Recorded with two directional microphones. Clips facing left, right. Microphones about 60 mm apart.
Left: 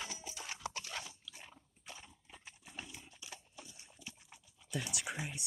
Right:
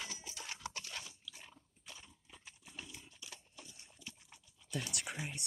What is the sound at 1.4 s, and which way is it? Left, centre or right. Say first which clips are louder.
Horse: left 2 dB; left.